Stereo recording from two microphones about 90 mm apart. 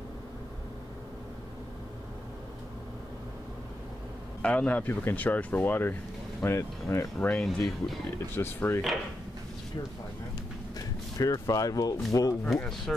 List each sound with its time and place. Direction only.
4.4 s speech: 15° left (ahead or behind); by 7.1 s 30° left (ahead or behind)
7.2 s speech: 15° left (ahead or behind)
7.5 s speech: 5° left (ahead or behind)
8.4 s speech: 25° left (ahead or behind)
11.1 s speech: 40° left (ahead or behind)
12.4 s speech: centre (ahead or behind)